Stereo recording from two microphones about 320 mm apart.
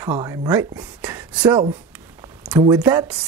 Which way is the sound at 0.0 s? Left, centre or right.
Centre.